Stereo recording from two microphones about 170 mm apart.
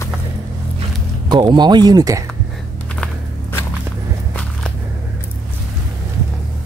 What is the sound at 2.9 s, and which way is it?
Walk, 10° left (ahead or behind).